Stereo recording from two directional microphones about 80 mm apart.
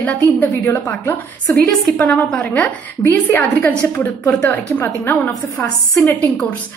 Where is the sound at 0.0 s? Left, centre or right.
Left.